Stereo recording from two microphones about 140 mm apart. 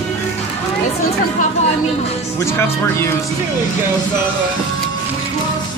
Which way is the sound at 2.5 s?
20° left (ahead or behind).